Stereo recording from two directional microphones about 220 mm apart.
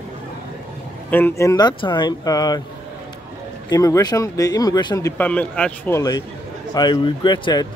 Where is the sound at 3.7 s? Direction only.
15° left (ahead or behind).